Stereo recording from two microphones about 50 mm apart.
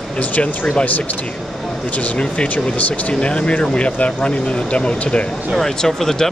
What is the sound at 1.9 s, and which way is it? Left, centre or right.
Speech, left.